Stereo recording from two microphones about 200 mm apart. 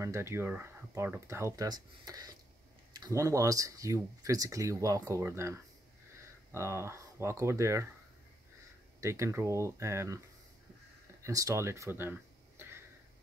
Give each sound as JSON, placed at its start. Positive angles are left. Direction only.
{"t": 0.0, "sound": "speech", "side_deg": -15}
{"t": 9.0, "sound": "speech", "side_deg": -15}
{"t": 11.2, "sound": "speech", "side_deg": -15}